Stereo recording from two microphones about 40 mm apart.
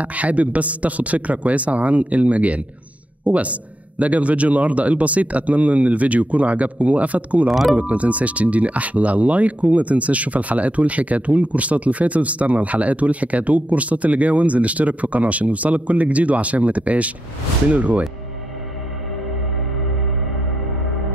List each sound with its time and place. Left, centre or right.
0.0 s speech: right